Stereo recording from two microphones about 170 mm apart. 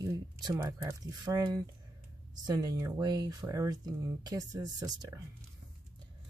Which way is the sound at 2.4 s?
20° right (ahead or behind).